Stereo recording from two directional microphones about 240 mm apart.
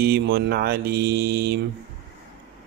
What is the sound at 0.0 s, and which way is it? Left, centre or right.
Speech, right.